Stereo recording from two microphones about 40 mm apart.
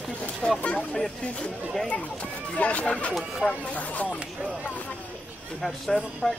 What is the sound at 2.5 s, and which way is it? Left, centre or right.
Speech, left.